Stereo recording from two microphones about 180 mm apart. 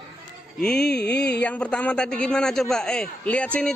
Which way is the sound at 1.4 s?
5° left (ahead or behind).